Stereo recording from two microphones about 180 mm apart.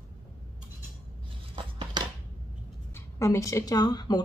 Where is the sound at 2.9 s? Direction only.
15° left (ahead or behind).